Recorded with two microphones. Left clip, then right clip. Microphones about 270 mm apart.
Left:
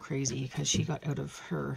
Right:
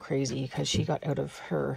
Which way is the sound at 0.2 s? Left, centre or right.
Left.